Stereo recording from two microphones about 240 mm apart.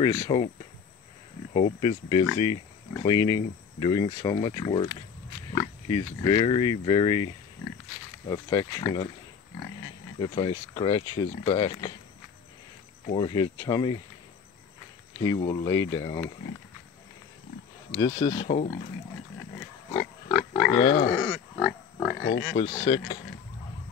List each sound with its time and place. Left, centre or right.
0.0 s speech: centre
1.5 s speech: left
8.3 s speech: centre
10.1 s speech: centre
13.0 s speech: left
15.4 s speech: centre
17.9 s speech: centre
19.9 s pig: centre
20.7 s speech: centre
21.1 s pig: centre
22.2 s speech: left
22.6 s speech: centre